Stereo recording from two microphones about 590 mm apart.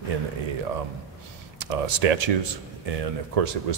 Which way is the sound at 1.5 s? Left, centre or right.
Right.